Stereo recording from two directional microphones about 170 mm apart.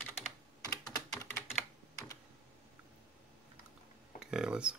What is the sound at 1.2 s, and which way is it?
Computer keyboard, 15° left (ahead or behind).